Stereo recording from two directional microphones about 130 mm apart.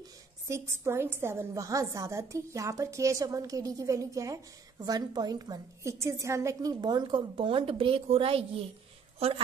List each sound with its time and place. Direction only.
0.5 s a woman's voice: 20° right (ahead or behind); by 8.5 s 45° right (ahead or behind)